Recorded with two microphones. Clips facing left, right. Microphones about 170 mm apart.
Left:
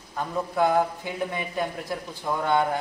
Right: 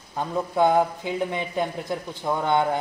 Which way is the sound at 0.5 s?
20° right (ahead or behind).